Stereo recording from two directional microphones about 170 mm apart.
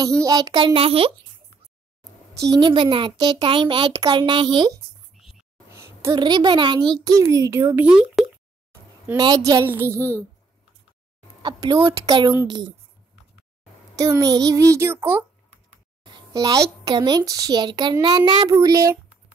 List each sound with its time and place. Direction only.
0.2 s a child's voice: 20° right (ahead or behind)
2.3 s a child's voice: 20° right (ahead or behind)
5.1 s a sound: centre (ahead or behind)
5.7 s a sound: 15° right (ahead or behind)
6.1 s a child's voice: 25° right (ahead or behind); by 8.3 s 5° right (ahead or behind)
9.0 s a child's voice: 25° right (ahead or behind)
11.4 s a child's voice: 25° right (ahead or behind)
13.9 s a child's voice: 20° right (ahead or behind)
16.1 s a child's voice: 25° right (ahead or behind)